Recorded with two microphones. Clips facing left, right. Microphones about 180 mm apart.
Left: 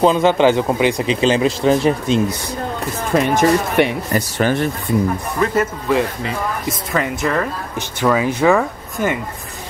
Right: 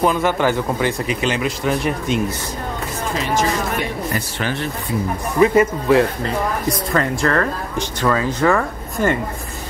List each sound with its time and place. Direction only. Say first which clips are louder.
0.0 s speech: left 4 dB; 25° left (ahead or behind)
1.2 s speech: left 7 dB; 30° left (ahead or behind)
3.2 s speech: left 6 dB; 55° left (ahead or behind)
4.1 s speech: left 6 dB; 45° left (ahead or behind)
5.4 s speech: right 5 dB; 10° right (ahead or behind)
6.9 s speech: even; 5° left (ahead or behind)